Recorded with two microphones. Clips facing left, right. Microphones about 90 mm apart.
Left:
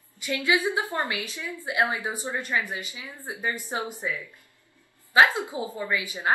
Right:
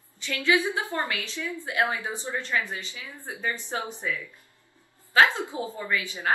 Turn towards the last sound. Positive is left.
turn(degrees=20)  # may be behind; listen again after turning